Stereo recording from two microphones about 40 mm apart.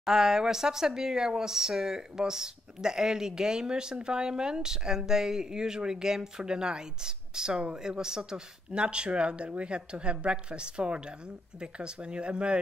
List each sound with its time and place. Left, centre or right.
0.0 s speech: centre